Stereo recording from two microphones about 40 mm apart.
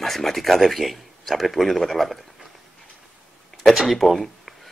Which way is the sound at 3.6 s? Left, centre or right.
Centre.